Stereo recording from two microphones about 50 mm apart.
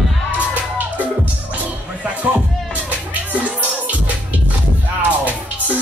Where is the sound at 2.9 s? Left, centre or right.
Right.